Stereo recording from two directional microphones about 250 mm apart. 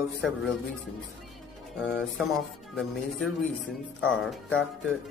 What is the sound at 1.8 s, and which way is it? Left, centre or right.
Speech, centre.